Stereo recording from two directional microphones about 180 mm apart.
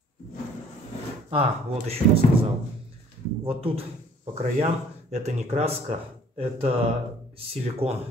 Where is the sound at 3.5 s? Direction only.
30° right (ahead or behind).